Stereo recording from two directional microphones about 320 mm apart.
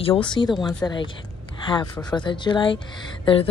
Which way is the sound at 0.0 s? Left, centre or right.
Centre.